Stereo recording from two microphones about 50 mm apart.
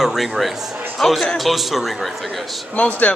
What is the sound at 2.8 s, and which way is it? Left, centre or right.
Speech, left.